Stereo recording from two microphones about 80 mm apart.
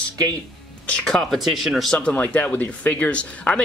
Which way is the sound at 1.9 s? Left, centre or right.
Centre.